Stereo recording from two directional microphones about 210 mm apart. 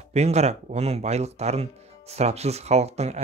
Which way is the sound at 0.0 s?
30° right (ahead or behind).